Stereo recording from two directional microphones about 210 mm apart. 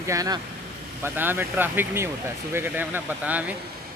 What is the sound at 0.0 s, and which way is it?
Speech, 15° right (ahead or behind).